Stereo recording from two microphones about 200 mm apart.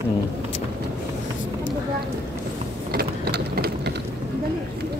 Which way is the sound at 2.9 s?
50° right (ahead or behind).